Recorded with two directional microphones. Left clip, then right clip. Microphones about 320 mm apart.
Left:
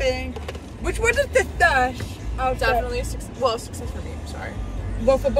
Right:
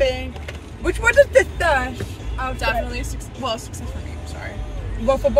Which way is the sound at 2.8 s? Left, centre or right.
Centre.